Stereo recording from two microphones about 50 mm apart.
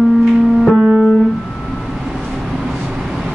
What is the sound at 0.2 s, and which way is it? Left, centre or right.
Music, centre.